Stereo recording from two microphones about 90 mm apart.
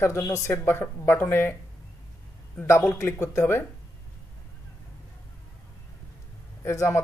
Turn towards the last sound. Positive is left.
turn(degrees=30)  # may be behind; listen again after turning